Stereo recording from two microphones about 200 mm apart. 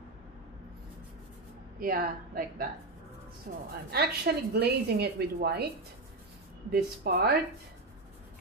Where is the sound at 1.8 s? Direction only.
45° right (ahead or behind).